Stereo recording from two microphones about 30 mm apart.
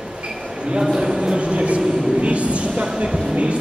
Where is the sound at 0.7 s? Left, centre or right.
Right.